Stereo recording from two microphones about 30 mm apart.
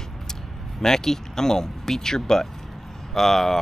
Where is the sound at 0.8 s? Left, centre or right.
Centre.